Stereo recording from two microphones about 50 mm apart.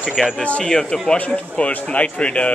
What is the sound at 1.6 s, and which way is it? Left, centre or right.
Speech, left.